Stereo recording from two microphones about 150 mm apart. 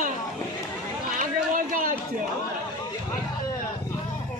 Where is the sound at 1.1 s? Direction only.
60° right (ahead or behind).